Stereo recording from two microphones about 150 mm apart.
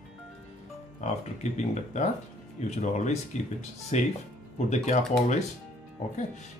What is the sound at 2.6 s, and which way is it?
Speech, 50° left (ahead or behind).